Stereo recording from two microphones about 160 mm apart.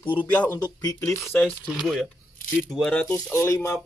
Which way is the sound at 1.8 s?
Centre (ahead or behind).